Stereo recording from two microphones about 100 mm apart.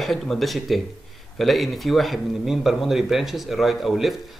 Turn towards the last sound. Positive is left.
turn(degrees=0)  # may be behind; listen again after turning